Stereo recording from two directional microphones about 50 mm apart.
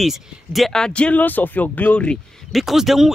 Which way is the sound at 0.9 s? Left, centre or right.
Left.